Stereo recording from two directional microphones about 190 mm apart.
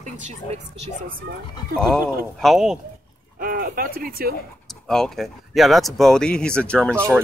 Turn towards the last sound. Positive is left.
turn(degrees=5)  # may be behind; listen again after turning